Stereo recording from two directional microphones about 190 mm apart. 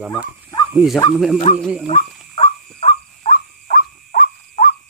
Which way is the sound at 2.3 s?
35° left (ahead or behind).